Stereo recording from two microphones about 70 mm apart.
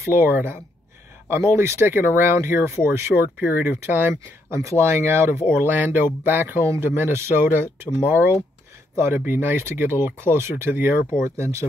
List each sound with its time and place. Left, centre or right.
0.0 s speech: right
6.6 s speech: right
11.1 s speech: right